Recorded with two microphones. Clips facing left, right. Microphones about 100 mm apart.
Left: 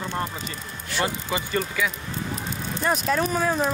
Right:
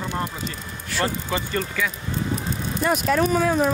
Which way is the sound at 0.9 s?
15° left (ahead or behind).